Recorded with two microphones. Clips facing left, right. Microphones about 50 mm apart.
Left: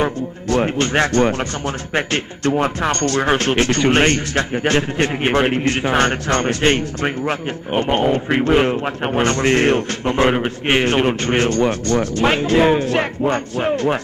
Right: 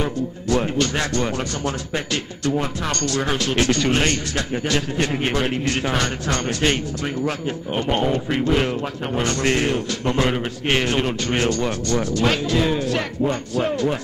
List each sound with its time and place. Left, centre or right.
0.0 s speech: left
10.0 s a man's voice: left